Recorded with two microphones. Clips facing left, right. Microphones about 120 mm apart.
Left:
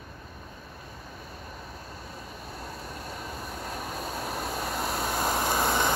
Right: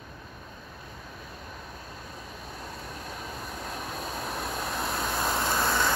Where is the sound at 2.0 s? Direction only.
5° left (ahead or behind).